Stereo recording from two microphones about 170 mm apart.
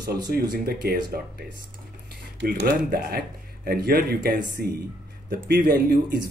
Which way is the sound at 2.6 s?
65° right (ahead or behind).